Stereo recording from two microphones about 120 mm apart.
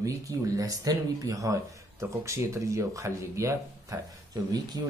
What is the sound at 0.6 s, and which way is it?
Speech, 30° right (ahead or behind).